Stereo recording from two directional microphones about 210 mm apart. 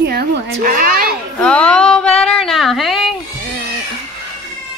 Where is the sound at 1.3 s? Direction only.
5° left (ahead or behind).